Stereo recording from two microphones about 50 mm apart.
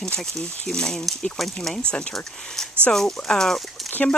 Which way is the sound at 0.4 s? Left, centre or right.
Centre.